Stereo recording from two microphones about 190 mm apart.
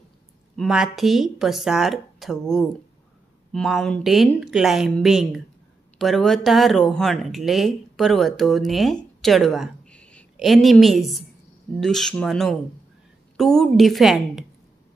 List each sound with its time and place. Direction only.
0.6 s a woman's voice: 5° right (ahead or behind)